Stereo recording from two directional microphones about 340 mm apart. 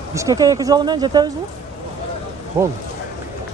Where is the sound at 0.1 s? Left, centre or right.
Centre.